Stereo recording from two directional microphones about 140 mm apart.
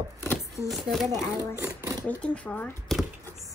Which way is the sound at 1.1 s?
20° right (ahead or behind).